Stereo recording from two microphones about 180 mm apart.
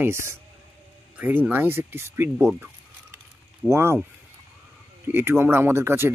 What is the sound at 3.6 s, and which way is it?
Speech, 15° right (ahead or behind).